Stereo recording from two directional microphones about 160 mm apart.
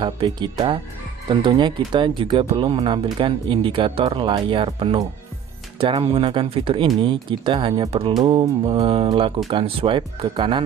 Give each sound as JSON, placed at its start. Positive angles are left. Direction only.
{"t": 0.0, "sound": "speech", "side_deg": -30}